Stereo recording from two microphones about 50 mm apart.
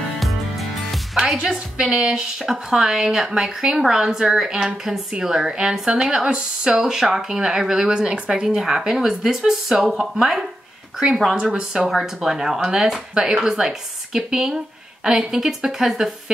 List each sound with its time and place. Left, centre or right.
0.2 s music: centre
1.1 s speech: centre
2.3 s speech: centre
11.8 s speech: centre